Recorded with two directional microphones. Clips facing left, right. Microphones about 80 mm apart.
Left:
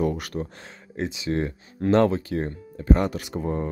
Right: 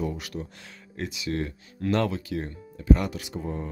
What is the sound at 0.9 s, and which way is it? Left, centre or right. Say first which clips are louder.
Speech: left 4 dB; left.